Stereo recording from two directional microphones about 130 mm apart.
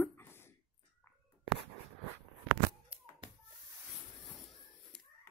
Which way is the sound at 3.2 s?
40° right (ahead or behind).